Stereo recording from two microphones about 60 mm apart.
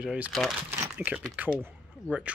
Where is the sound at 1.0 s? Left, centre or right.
Right.